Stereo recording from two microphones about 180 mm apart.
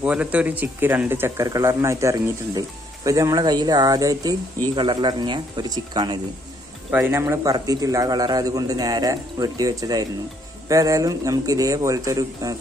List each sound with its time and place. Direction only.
0.0 s speech: 5° right (ahead or behind); by 6.1 s 25° right (ahead or behind)
6.9 s speech: 10° right (ahead or behind)